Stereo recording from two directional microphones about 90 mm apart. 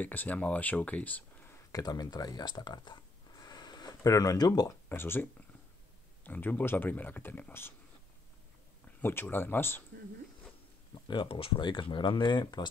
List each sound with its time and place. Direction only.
0.0 s speech: 20° left (ahead or behind)
1.7 s speech: 45° left (ahead or behind)
4.8 s speech: 25° left (ahead or behind)
8.8 s speech: 25° left (ahead or behind)
11.1 s speech: 75° left (ahead or behind); by 12.6 s 55° left (ahead or behind)